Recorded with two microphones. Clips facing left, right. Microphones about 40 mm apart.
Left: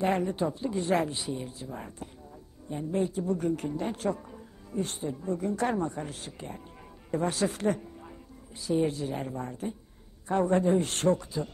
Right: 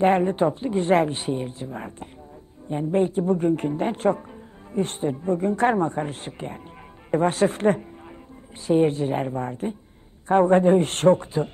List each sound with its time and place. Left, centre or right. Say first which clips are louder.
0.0 s speech: right 8 dB; right